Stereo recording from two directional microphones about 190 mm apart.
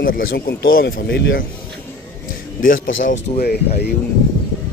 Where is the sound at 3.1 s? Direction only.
55° left (ahead or behind).